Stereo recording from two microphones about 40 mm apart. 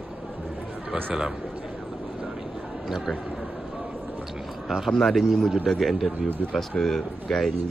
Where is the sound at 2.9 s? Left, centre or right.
Centre.